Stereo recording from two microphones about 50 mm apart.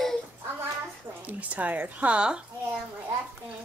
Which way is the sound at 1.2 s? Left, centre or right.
Right.